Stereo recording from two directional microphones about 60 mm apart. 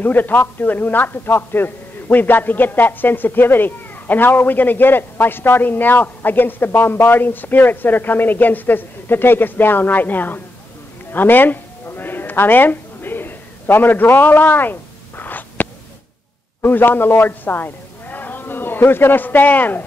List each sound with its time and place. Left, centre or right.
0.0 s a man's voice: left
11.1 s a sound: left
16.6 s a man's voice: left